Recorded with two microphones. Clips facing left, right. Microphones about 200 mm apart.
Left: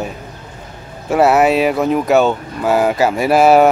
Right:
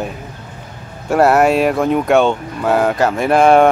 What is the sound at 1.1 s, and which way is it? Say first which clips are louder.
Speech: even; centre (ahead or behind).